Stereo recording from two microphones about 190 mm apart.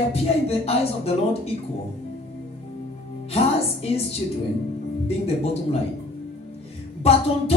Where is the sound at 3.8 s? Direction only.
30° left (ahead or behind).